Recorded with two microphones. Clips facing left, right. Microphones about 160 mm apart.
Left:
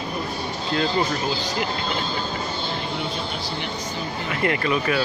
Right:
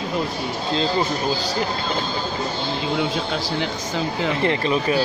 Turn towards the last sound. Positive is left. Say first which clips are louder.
# right 2 dB
turn(degrees=-30)  # may be behind; listen again after turning